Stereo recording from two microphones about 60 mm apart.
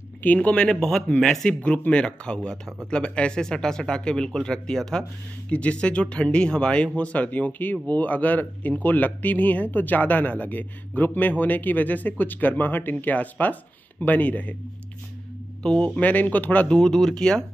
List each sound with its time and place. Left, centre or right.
0.2 s speech: left
5.5 s speech: left
15.6 s speech: centre
16.0 s speech: left
16.7 s speech: centre